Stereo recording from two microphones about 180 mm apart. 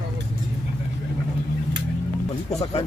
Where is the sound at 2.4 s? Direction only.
35° left (ahead or behind).